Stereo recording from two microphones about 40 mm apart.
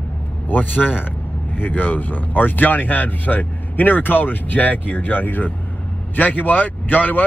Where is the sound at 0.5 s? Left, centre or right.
Left.